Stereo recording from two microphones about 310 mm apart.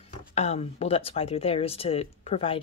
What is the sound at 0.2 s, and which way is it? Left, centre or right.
Speech, left.